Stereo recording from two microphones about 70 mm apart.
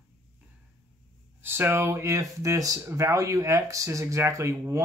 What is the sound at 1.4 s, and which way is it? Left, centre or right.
Speech, right.